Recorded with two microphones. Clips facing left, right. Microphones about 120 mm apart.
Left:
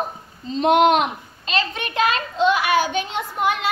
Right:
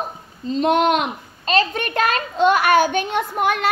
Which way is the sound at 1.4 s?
45° right (ahead or behind).